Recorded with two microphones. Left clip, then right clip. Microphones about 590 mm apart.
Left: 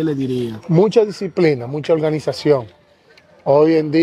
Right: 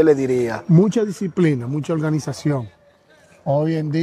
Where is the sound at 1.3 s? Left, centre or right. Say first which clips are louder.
Left 5 dB; left.